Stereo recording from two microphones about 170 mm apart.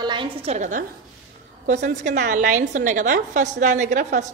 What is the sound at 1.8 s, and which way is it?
A woman's voice, 45° right (ahead or behind).